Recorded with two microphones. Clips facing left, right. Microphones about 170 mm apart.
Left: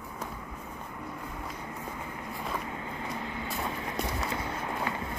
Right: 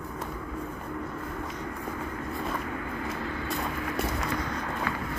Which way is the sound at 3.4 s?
25° left (ahead or behind).